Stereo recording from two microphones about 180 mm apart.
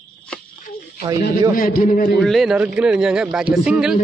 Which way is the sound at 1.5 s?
50° left (ahead or behind).